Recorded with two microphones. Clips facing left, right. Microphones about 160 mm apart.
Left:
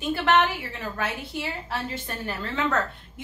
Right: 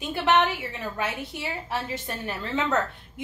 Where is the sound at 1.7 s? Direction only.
20° right (ahead or behind).